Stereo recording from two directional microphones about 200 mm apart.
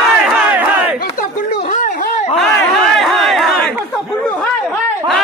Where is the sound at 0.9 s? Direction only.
45° left (ahead or behind).